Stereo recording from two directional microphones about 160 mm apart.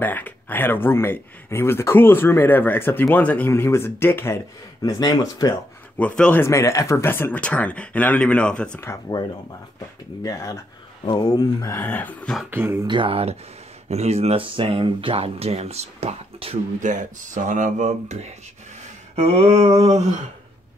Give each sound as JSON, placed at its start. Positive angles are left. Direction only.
{"t": 0.0, "sound": "speech", "side_deg": 10}
{"t": 4.8, "sound": "speech", "side_deg": 25}
{"t": 5.9, "sound": "speech", "side_deg": 5}
{"t": 10.2, "sound": "speech", "side_deg": 20}
{"t": 12.4, "sound": "speech", "side_deg": -15}
{"t": 12.8, "sound": "speech", "side_deg": -30}
{"t": 16.8, "sound": "speech", "side_deg": -50}